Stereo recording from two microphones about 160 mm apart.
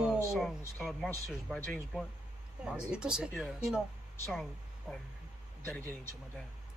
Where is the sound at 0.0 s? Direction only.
Centre (ahead or behind).